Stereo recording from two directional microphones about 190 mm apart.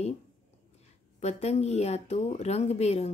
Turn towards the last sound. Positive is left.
turn(degrees=35)  # may be behind; listen again after turning